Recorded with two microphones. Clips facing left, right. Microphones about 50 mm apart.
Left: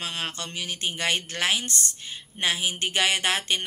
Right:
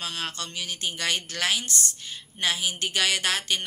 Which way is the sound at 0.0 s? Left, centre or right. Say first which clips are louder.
Left 1 dB; centre.